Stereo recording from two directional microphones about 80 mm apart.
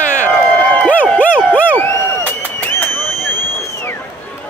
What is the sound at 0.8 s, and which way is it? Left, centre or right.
Crowd, centre.